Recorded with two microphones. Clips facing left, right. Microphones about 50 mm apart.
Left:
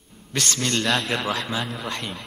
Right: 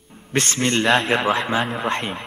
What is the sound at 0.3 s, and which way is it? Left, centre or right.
Music, right.